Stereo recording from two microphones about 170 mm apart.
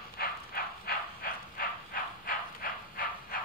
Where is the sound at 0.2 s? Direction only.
60° left (ahead or behind).